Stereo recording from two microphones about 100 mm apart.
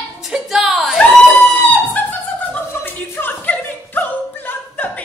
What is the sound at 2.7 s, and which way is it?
Music, 20° left (ahead or behind).